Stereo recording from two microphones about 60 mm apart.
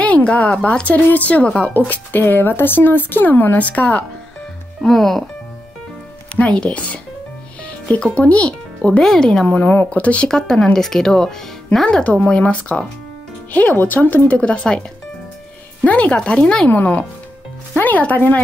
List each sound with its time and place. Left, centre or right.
0.0 s speech: left
3.5 s speech: left
4.8 s speech: centre
6.3 s speech: left
9.0 s speech: centre
9.5 s speech: left
10.3 s speech: centre
12.0 s speech: left
13.7 s speech: left; by 16.7 s centre
16.7 s speech: left